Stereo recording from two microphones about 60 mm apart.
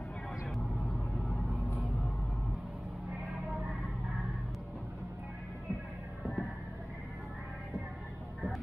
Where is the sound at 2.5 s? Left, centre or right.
Centre.